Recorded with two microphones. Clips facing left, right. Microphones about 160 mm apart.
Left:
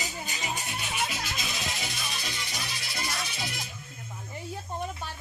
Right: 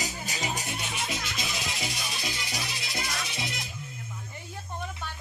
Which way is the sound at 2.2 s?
Centre (ahead or behind).